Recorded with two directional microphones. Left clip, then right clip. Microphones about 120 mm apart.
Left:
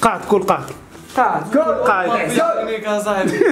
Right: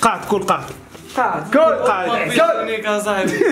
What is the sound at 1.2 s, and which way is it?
Speech, 20° left (ahead or behind).